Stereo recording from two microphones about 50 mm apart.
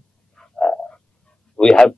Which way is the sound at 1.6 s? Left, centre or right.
Centre.